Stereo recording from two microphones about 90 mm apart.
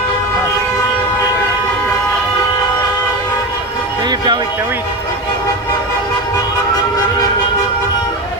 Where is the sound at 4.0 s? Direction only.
55° right (ahead or behind).